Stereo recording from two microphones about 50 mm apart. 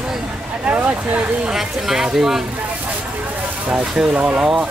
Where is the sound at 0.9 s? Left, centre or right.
Right.